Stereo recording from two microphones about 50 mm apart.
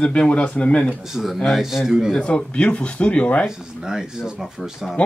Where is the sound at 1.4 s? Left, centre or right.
Centre.